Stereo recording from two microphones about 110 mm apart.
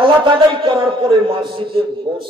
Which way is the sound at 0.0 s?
50° right (ahead or behind).